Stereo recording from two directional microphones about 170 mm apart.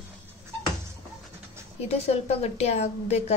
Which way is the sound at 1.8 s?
40° left (ahead or behind).